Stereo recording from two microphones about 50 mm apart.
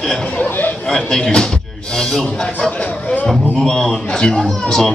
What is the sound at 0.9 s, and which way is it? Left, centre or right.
A man's voice, centre.